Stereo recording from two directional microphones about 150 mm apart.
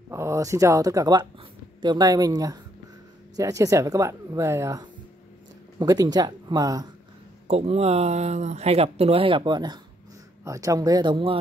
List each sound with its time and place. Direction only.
0.1 s speech: 20° right (ahead or behind)
7.4 s speech: 45° right (ahead or behind)